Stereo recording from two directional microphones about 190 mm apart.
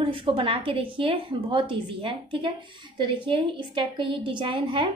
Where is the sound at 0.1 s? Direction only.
30° right (ahead or behind).